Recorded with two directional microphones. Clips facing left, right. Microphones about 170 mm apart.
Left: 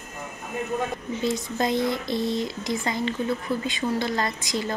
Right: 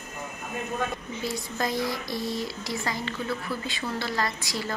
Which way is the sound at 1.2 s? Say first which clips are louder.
Left 5 dB; 20° left (ahead or behind).